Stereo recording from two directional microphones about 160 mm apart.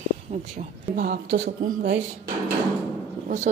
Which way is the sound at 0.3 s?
40° right (ahead or behind).